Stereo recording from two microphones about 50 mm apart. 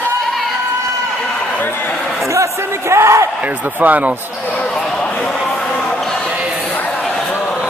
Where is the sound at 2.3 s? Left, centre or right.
Right.